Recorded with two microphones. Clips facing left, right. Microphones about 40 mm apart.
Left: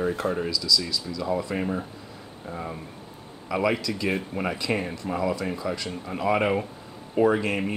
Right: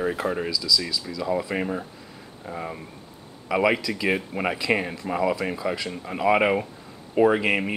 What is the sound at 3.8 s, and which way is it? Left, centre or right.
Speech, centre.